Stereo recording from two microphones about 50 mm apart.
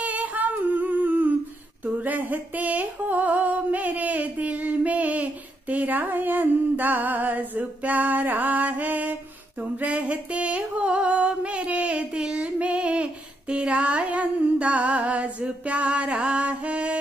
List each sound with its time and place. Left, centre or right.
0.0 s humming: right
2.0 s a sound: right
9.6 s music: right